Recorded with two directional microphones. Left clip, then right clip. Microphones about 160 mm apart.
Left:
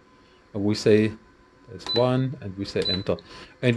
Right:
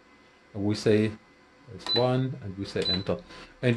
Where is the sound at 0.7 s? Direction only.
40° left (ahead or behind).